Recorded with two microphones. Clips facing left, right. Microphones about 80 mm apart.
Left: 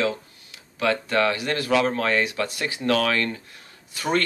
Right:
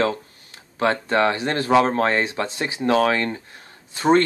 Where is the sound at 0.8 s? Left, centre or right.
Right.